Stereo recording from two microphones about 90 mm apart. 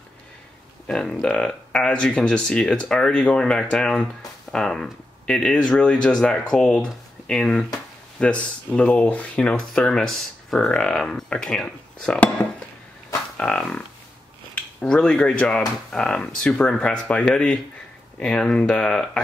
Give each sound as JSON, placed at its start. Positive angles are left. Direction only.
{"t": 0.8, "sound": "speech", "side_deg": 10}
{"t": 13.4, "sound": "a sound", "side_deg": 10}
{"t": 14.5, "sound": "speech", "side_deg": 10}